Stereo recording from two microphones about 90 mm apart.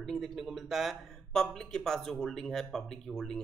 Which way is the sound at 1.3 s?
5° left (ahead or behind).